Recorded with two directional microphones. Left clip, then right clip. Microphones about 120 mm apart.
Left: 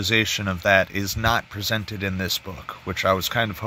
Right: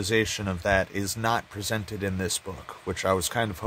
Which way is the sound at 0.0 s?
15° right (ahead or behind).